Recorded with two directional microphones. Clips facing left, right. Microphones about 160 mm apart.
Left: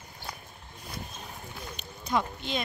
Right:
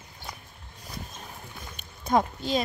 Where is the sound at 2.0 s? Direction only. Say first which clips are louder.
Right 5 dB; 40° right (ahead or behind).